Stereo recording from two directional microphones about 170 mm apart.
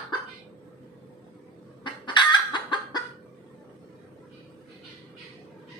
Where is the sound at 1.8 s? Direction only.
30° left (ahead or behind).